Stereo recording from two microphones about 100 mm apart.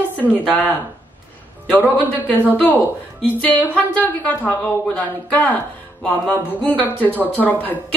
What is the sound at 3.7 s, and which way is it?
A woman's voice, 15° left (ahead or behind).